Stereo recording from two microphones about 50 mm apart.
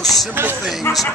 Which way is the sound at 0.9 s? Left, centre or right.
Left.